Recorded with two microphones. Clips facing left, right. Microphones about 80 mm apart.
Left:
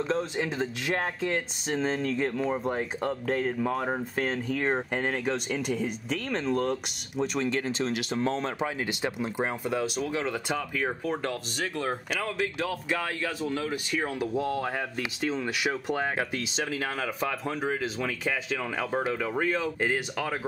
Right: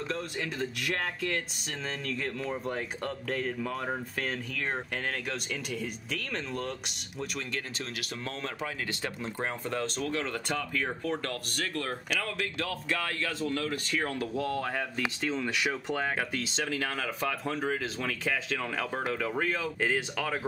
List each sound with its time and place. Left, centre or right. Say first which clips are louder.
0.1 s speech: left 6 dB; left
4.9 s speech: left 6 dB; left
7.3 s speech: left 10 dB; left